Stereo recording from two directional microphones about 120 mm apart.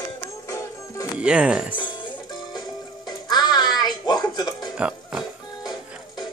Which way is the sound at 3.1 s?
35° left (ahead or behind).